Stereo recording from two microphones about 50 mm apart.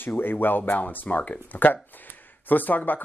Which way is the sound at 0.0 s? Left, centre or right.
Left.